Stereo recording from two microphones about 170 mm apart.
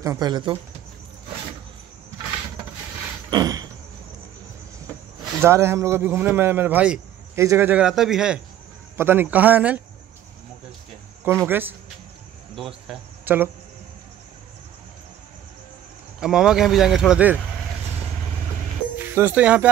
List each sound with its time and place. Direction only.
0.0 s speech: 20° right (ahead or behind)
2.2 s a sound: 25° right (ahead or behind)
5.4 s speech: 15° right (ahead or behind)
11.4 s speech: 10° right (ahead or behind)
12.5 s speech: centre (ahead or behind)
13.2 s speech: 10° right (ahead or behind)
16.2 s speech: 5° right (ahead or behind)
19.1 s speech: 10° right (ahead or behind)